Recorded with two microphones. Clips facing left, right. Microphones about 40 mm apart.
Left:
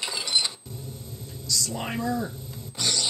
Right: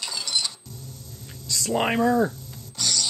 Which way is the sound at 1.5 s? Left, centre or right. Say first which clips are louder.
Right 7 dB; right.